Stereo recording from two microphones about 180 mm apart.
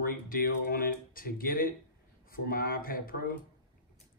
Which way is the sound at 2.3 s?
55° left (ahead or behind).